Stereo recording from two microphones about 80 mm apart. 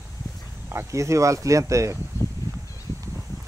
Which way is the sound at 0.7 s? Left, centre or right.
Right.